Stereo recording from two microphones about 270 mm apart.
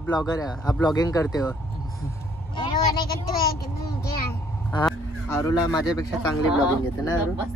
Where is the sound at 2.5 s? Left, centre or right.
Centre.